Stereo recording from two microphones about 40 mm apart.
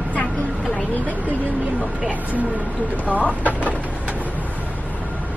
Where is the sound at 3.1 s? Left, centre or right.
Right.